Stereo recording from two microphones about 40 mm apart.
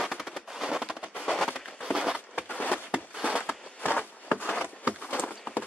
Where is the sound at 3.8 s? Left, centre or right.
Left.